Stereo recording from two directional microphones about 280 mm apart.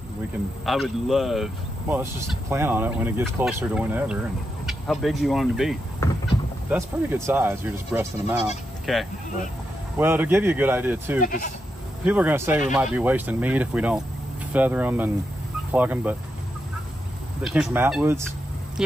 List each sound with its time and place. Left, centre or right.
0.7 s speech: centre
11.1 s speech: left
12.0 s speech: centre
17.4 s speech: centre